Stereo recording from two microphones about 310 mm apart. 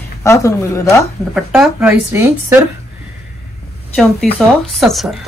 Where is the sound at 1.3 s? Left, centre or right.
Centre.